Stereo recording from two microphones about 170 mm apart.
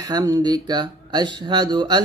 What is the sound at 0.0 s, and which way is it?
Mantra, 20° right (ahead or behind).